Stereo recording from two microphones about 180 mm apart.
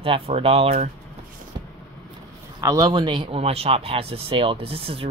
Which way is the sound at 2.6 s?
20° right (ahead or behind).